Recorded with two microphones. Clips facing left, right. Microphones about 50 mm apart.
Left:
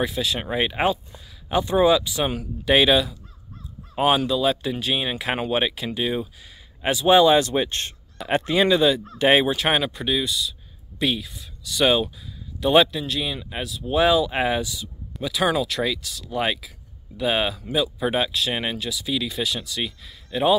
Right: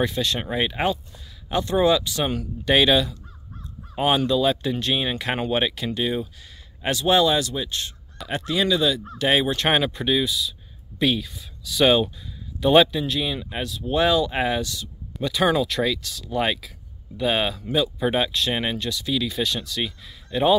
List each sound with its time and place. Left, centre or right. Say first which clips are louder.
0.0 s speech: right 1 dB; centre
7.2 s speech: left 5 dB; left
8.3 s speech: left 4 dB; left
9.5 s speech: even; centre
15.1 s speech: right 1 dB; centre